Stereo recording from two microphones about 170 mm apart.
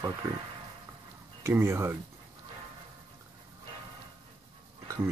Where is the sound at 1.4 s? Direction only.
15° right (ahead or behind).